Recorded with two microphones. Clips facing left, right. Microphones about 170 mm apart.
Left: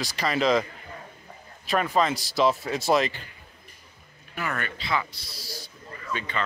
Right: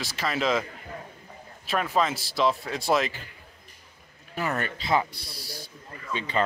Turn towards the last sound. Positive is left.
turn(degrees=-25)  # may be behind; listen again after turning